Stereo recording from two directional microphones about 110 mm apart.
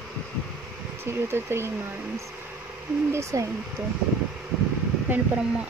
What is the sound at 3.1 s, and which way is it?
Speech, 30° right (ahead or behind).